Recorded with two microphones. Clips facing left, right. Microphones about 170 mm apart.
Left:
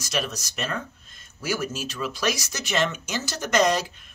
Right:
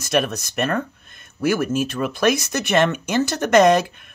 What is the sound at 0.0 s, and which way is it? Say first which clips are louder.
Speech: right 8 dB; 55° right (ahead or behind).